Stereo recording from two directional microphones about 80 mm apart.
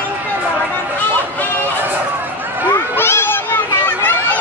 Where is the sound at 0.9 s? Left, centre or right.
Left.